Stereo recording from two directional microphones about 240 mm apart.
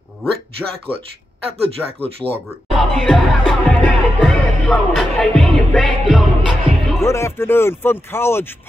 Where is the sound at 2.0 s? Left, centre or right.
Right.